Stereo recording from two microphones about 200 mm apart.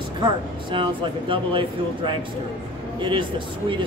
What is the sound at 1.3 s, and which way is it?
Speech, 25° right (ahead or behind).